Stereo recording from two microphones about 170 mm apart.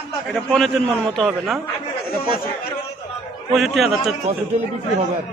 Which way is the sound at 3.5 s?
Centre (ahead or behind).